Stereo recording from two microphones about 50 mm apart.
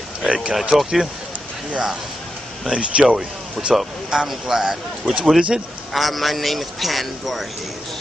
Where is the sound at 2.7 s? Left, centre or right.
Right.